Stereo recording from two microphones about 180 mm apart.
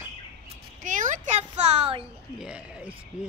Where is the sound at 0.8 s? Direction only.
45° right (ahead or behind).